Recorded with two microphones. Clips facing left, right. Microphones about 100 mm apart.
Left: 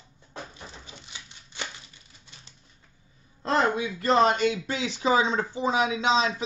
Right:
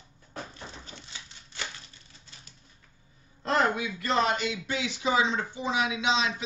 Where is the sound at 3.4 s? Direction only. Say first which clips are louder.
Left 2 dB; 30° left (ahead or behind).